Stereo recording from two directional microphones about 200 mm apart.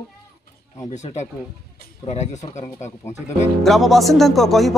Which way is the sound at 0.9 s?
35° left (ahead or behind).